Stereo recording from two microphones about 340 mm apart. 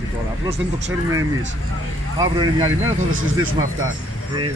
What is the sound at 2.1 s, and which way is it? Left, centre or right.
Speech, centre.